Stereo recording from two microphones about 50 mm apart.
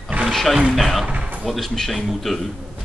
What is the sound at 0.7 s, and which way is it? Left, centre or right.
Speech, centre.